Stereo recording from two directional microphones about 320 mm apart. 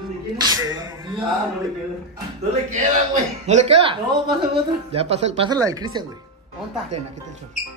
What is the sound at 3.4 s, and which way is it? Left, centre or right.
Speech, centre.